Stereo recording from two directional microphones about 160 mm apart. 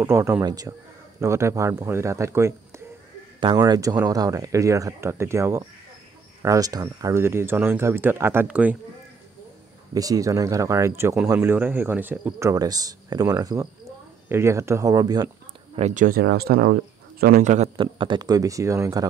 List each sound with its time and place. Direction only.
0.0 s speech: 15° right (ahead or behind)
3.3 s speech: 25° right (ahead or behind); by 8.7 s 10° right (ahead or behind)
9.9 s speech: 20° right (ahead or behind)
15.7 s speech: 50° right (ahead or behind); by 17.4 s 70° right (ahead or behind)
17.4 s a man's voice: 50° right (ahead or behind)
17.7 s speech: 30° right (ahead or behind)